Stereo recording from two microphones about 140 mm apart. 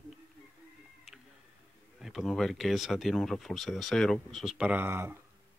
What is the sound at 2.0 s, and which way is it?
Speech, centre (ahead or behind).